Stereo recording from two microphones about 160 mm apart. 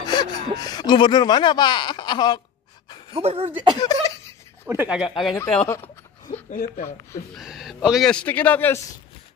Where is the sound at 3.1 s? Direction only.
40° right (ahead or behind).